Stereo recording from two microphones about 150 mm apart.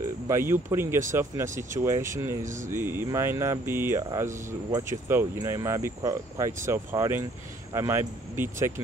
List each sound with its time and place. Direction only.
0.3 s speech: 15° right (ahead or behind)
4.1 s speech: 25° right (ahead or behind)